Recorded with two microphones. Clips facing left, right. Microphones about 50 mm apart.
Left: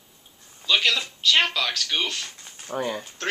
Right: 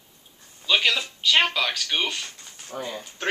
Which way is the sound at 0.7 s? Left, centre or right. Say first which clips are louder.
Even; centre.